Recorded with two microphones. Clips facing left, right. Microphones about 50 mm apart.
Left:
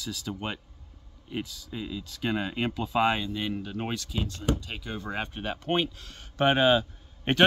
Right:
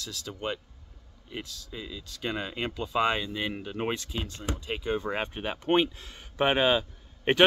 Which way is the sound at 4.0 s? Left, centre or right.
Right.